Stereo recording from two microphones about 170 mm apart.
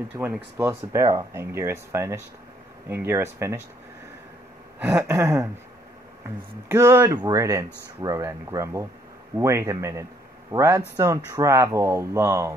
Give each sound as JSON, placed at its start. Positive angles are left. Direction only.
{"t": 0.2, "sound": "speech", "side_deg": -10}
{"t": 4.7, "sound": "speech", "side_deg": -10}
{"t": 6.7, "sound": "speech", "side_deg": -15}